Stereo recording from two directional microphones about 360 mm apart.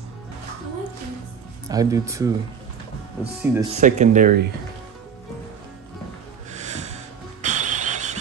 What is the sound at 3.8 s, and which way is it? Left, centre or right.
Speech, right.